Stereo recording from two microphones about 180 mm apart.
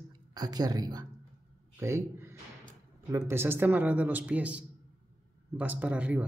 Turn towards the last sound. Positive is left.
turn(degrees=-5)  # may be behind; listen again after turning